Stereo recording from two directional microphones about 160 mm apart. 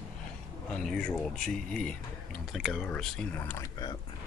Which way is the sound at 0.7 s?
5° left (ahead or behind).